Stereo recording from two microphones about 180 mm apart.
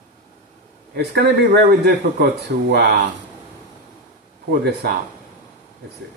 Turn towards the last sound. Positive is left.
turn(degrees=-65)  # may be behind; listen again after turning